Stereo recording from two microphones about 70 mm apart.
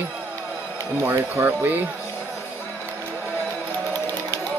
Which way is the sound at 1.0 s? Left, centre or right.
Right.